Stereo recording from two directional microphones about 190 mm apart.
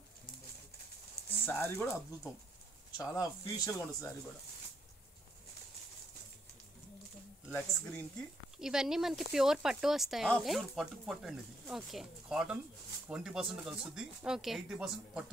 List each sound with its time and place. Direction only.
1.4 s speech: 10° left (ahead or behind)
7.5 s speech: 10° left (ahead or behind)
8.5 s speech: 5° right (ahead or behind)